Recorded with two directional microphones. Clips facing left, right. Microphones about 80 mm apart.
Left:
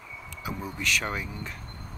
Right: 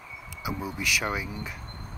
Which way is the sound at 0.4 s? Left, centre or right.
Centre.